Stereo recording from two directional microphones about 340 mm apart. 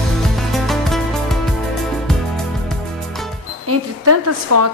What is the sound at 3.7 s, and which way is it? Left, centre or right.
Speech, right.